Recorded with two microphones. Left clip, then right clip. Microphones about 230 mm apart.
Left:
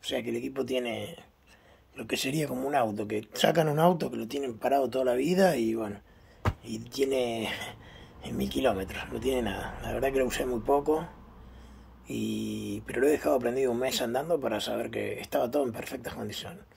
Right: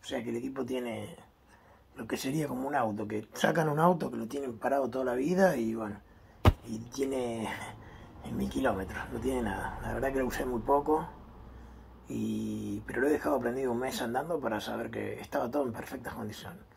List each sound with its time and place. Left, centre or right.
0.1 s speech: left
12.1 s speech: left